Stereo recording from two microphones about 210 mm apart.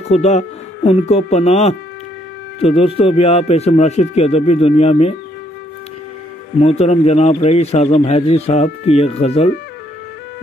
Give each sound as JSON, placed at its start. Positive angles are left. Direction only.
{"t": 0.1, "sound": "a man's voice", "side_deg": 30}
{"t": 6.6, "sound": "a man's voice", "side_deg": 30}